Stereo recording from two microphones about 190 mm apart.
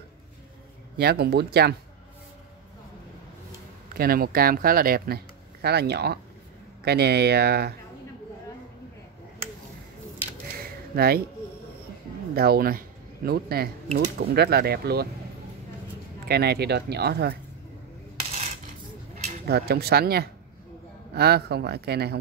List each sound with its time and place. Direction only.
0.9 s speech: 55° right (ahead or behind)
3.9 s speech: 50° right (ahead or behind)
11.0 s speech: 55° right (ahead or behind)
12.4 s speech: 55° right (ahead or behind)
16.3 s speech: 60° right (ahead or behind)
19.1 s speech: 50° right (ahead or behind)